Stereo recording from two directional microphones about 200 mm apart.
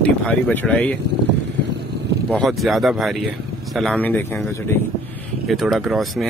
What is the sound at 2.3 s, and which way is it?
Speech, centre (ahead or behind).